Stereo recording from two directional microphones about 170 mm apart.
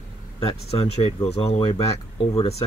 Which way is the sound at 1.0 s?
35° left (ahead or behind).